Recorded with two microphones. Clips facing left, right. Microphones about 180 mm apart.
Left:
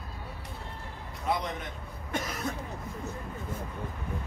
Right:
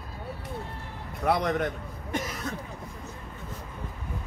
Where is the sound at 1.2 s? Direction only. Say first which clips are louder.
Right 7 dB; 70° right (ahead or behind).